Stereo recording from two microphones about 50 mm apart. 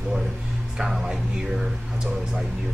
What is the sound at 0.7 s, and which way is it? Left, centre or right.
Speech, centre.